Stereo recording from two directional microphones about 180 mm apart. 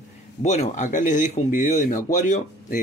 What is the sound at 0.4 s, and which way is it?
Speech, 40° left (ahead or behind).